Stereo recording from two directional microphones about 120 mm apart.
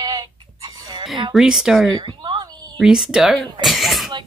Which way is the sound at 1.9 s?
40° right (ahead or behind).